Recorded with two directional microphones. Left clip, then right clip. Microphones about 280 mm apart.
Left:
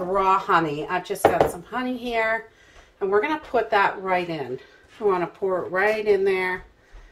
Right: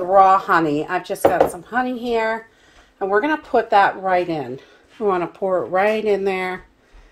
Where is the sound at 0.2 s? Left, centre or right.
Right.